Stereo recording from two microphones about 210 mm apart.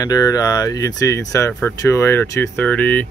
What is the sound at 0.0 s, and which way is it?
Speech, 20° left (ahead or behind).